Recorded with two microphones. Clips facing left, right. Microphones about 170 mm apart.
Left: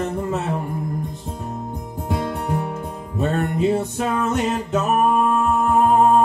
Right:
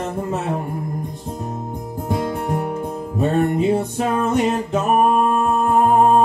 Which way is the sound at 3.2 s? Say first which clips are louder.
Right 3 dB; 15° right (ahead or behind).